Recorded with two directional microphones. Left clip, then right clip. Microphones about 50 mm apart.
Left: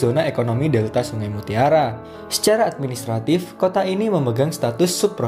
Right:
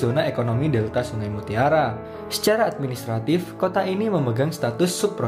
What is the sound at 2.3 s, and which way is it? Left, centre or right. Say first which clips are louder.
Speech: left 3 dB; left.